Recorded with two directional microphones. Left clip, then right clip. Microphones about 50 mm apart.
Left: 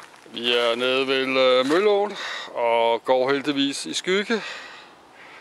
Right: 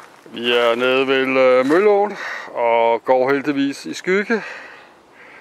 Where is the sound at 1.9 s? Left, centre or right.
Right.